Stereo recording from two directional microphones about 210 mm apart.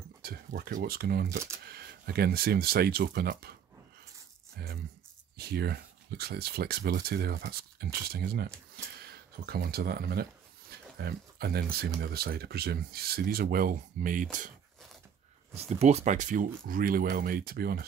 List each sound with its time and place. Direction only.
0.2 s speech: 45° right (ahead or behind)
4.6 s speech: 50° right (ahead or behind)
15.5 s speech: 30° right (ahead or behind); by 17.8 s 45° right (ahead or behind)